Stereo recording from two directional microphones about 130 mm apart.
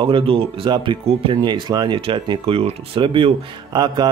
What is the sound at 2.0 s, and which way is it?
Speech, 45° right (ahead or behind).